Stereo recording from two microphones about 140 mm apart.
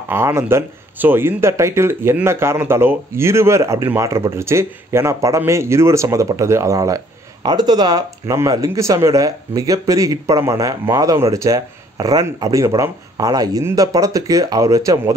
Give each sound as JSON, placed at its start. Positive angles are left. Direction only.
{"t": 0.1, "sound": "speech", "side_deg": -15}